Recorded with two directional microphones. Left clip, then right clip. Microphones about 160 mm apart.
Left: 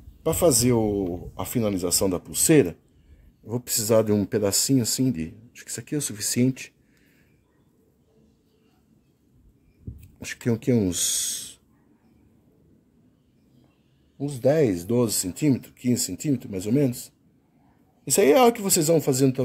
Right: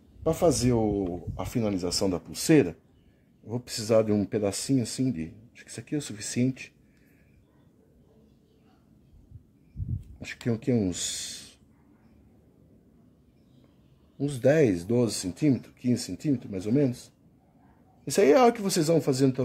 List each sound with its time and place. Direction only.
0.2 s speech: 30° left (ahead or behind)
10.2 s speech: 35° left (ahead or behind)
14.1 s speech: 5° right (ahead or behind); by 19.4 s 25° left (ahead or behind)